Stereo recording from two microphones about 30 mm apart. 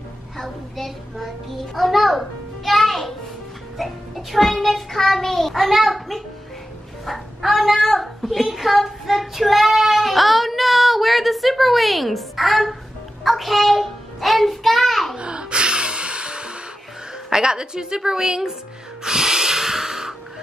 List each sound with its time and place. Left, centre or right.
0.4 s a child's voice: centre
1.8 s music: centre
3.7 s a child's voice: centre
4.9 s child singing: centre
5.5 s a child's voice: centre
8.5 s child singing: centre
15.1 s music: right
17.3 s a woman's voice: right
19.0 s snort: right